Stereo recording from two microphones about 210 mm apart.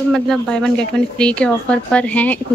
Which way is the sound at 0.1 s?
5° left (ahead or behind).